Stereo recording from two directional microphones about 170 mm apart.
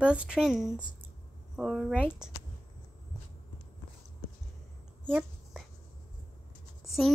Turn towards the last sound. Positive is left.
turn(degrees=0)  # may be behind; listen again after turning